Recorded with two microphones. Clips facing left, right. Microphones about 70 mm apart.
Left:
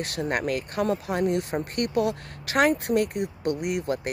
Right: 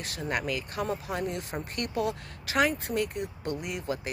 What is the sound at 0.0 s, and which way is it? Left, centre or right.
Speech, left.